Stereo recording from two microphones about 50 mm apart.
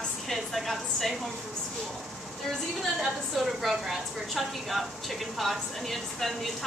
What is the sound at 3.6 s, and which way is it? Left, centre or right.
A woman's voice, centre.